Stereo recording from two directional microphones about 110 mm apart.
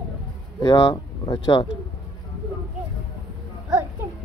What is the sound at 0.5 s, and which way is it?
Speech, 35° left (ahead or behind).